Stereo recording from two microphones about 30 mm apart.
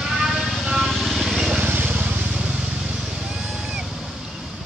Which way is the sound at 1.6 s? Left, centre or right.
Right.